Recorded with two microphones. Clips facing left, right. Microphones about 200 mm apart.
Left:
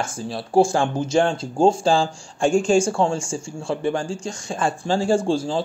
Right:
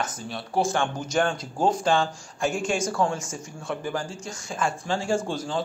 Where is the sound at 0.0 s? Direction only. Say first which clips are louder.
Left 4 dB; 30° left (ahead or behind).